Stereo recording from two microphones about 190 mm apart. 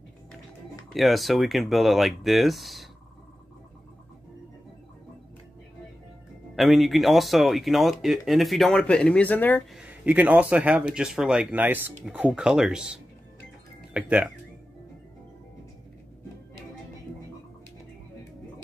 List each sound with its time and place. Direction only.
0.9 s speech: centre (ahead or behind)
6.5 s speech: centre (ahead or behind)
9.8 s speech: 10° right (ahead or behind)